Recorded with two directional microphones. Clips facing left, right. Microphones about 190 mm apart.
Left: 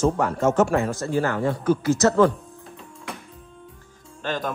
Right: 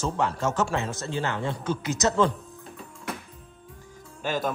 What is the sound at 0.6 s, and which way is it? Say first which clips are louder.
Speech: left 6 dB; 25° right (ahead or behind).